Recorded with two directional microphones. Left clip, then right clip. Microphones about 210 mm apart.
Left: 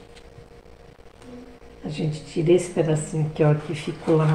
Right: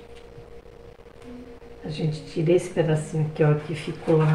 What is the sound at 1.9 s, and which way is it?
Speech, 25° left (ahead or behind).